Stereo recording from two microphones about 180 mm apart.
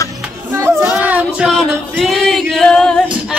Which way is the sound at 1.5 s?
Centre (ahead or behind).